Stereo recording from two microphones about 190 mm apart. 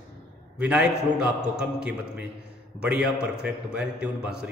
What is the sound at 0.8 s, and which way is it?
A man's voice, 5° right (ahead or behind).